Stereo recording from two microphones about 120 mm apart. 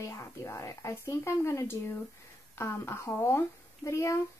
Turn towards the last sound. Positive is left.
turn(degrees=25)  # may be behind; listen again after turning